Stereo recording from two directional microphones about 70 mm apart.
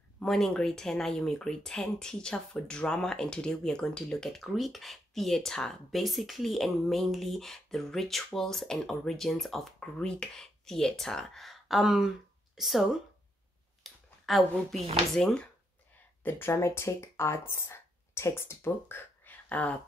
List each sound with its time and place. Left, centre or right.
0.2 s speech: centre
16.2 s speech: left